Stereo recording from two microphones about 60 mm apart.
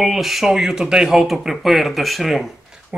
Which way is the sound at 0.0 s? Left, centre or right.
Centre.